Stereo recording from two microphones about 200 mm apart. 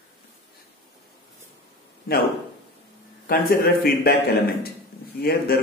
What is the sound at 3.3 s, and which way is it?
Speech, 50° left (ahead or behind).